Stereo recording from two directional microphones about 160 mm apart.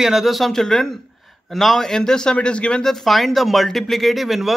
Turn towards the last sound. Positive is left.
turn(degrees=0)  # may be behind; listen again after turning